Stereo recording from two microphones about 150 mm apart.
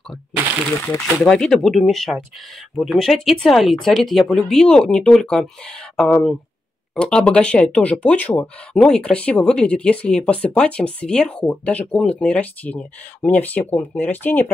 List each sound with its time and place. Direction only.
1.0 s speech: 5° left (ahead or behind)